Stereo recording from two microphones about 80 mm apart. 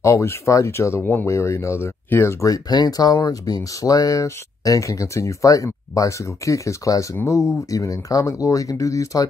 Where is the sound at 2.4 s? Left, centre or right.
Left.